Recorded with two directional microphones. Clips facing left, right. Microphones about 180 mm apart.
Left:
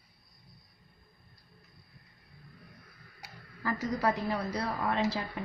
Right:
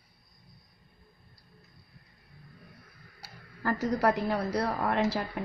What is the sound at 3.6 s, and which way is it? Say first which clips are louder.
A woman's voice: right 4 dB; 60° right (ahead or behind).